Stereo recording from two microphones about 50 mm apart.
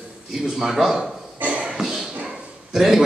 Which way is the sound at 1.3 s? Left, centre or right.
Right.